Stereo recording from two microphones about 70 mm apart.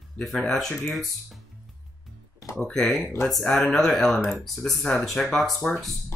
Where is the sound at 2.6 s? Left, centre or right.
Centre.